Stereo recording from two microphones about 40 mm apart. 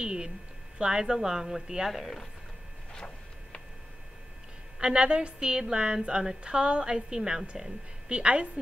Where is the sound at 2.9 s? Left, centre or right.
Left.